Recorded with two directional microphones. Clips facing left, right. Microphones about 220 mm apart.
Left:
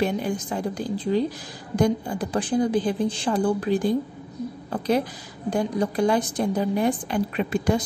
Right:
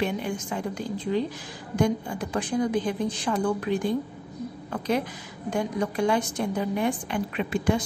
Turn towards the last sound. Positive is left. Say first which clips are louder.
# left 2 dB
turn(degrees=40)  # may be behind; listen again after turning